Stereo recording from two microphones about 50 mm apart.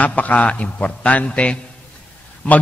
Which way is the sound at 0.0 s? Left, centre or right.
Left.